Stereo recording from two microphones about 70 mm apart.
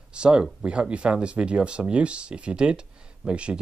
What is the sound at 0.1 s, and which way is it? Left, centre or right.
Speech, centre.